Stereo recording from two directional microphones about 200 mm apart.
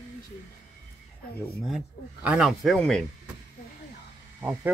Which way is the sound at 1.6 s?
5° right (ahead or behind).